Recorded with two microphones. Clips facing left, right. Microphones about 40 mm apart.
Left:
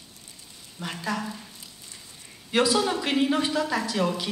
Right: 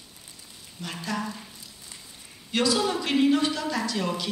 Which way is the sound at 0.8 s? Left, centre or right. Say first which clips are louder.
Left 1 dB; centre.